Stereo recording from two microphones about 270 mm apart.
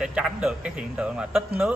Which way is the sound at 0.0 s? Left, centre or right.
Centre.